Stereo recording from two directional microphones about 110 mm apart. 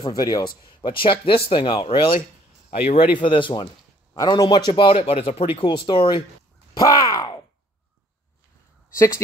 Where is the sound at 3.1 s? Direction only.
50° left (ahead or behind).